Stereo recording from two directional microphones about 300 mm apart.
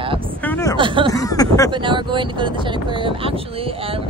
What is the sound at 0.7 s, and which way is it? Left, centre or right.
Speech, centre.